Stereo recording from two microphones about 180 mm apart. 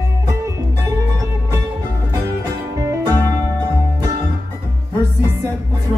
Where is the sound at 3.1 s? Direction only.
15° right (ahead or behind).